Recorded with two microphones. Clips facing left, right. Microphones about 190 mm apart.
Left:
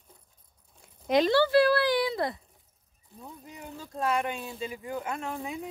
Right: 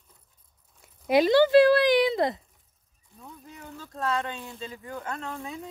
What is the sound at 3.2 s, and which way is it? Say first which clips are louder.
Speech: left 1 dB; 15° left (ahead or behind).